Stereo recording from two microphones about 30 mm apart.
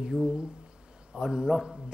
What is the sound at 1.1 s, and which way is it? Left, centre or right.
Speech, right.